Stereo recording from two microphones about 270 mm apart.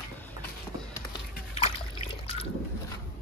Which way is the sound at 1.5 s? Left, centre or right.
Left.